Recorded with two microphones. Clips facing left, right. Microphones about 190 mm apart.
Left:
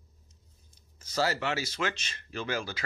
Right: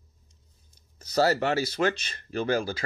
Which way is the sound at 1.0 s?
40° right (ahead or behind).